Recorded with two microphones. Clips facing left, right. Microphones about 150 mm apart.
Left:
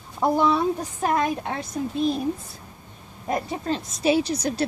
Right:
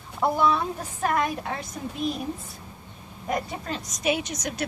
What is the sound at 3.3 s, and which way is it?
Speech, 30° left (ahead or behind).